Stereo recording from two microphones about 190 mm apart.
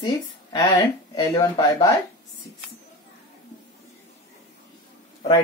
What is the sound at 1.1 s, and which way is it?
Speech, 20° left (ahead or behind).